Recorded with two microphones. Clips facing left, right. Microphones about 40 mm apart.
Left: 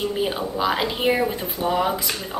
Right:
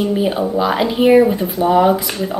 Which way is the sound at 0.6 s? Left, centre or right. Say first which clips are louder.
Right 6 dB; centre.